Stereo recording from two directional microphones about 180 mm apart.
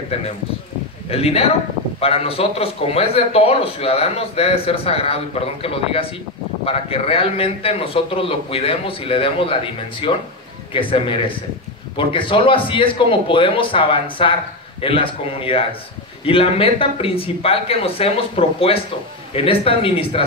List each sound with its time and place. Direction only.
1.1 s a man's voice: 35° left (ahead or behind)